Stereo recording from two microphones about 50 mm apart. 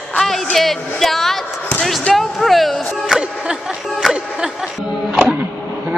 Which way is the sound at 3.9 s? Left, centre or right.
Centre.